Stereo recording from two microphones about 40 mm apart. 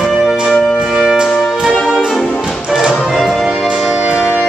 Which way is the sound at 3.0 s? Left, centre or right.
Centre.